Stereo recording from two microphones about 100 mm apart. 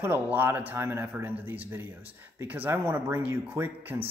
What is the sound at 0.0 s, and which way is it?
A man's voice, 20° right (ahead or behind).